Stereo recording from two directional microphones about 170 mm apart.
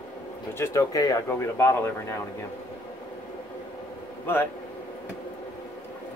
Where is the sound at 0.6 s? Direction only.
20° left (ahead or behind).